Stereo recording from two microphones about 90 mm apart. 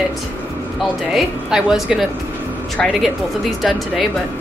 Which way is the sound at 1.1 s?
5° right (ahead or behind).